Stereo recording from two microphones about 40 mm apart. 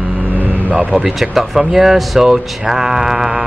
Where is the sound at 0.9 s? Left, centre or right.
Centre.